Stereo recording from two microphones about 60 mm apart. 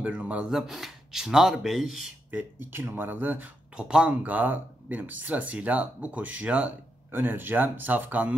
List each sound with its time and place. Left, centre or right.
0.0 s speech: right
0.4 s speech: centre
2.3 s speech: right
3.7 s speech: centre
4.2 s speech: right
7.1 s speech: right